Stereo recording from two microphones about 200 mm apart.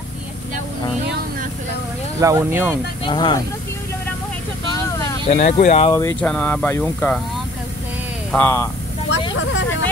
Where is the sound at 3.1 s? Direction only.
20° left (ahead or behind).